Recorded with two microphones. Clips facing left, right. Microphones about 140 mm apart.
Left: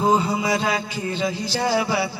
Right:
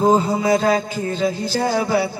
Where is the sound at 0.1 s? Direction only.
45° right (ahead or behind).